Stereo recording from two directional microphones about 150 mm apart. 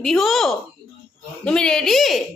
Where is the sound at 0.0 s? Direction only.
Centre (ahead or behind).